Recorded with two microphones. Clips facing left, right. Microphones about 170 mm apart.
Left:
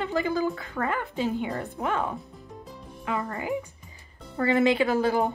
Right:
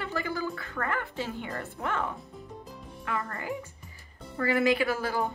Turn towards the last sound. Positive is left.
turn(degrees=20)  # may be behind; listen again after turning